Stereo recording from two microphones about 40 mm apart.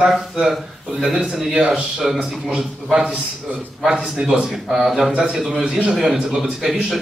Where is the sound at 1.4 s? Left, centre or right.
Centre.